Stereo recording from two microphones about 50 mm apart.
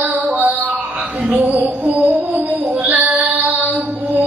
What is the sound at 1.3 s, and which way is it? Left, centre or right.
Music, right.